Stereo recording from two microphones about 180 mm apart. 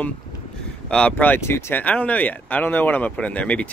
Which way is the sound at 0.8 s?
5° left (ahead or behind).